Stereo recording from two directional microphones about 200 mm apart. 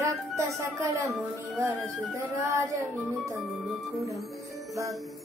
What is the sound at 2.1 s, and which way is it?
Speech, 15° right (ahead or behind).